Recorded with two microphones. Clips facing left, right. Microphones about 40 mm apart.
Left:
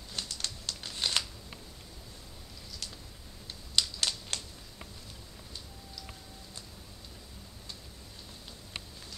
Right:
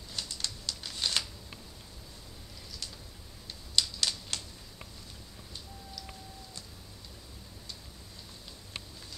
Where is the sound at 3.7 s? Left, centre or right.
Left.